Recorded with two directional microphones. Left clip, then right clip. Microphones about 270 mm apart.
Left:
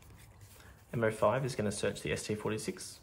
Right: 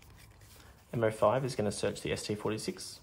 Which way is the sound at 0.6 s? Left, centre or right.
Centre.